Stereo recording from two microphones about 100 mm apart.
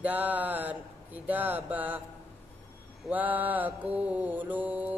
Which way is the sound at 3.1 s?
15° right (ahead or behind).